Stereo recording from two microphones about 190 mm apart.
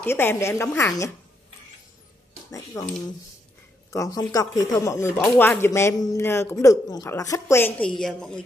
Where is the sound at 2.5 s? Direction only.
20° left (ahead or behind).